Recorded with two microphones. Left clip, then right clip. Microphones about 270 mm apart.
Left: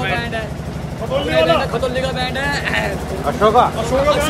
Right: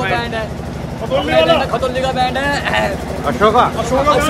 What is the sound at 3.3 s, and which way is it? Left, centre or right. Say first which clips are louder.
Speech: right 1 dB; right.